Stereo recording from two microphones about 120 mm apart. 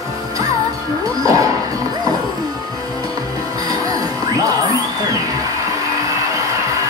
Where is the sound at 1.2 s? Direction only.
30° right (ahead or behind).